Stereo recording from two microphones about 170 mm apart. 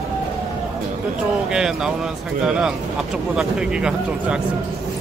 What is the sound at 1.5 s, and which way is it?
Speech, 5° right (ahead or behind).